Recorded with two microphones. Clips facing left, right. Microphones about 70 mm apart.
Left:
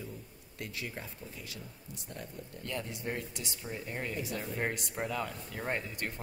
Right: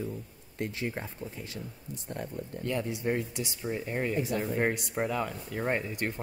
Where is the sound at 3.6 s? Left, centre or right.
Right.